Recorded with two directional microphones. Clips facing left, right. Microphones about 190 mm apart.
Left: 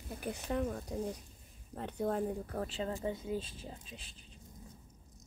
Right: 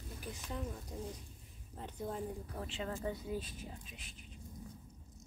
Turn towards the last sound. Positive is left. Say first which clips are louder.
# left 2 dB
turn(degrees=30)  # may be behind; listen again after turning